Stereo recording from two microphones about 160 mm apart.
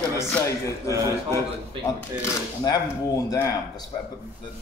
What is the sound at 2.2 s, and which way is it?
A man's voice, 25° left (ahead or behind).